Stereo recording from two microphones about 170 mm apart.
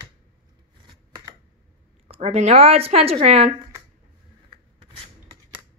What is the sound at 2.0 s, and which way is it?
Speech, 35° right (ahead or behind).